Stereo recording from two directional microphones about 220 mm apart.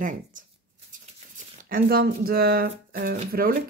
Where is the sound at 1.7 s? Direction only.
45° right (ahead or behind).